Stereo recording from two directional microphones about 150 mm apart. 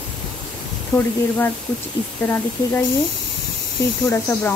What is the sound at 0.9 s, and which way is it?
Speech, 20° left (ahead or behind).